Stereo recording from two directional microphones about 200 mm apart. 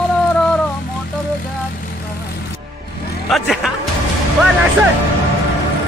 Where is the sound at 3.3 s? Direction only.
Centre (ahead or behind).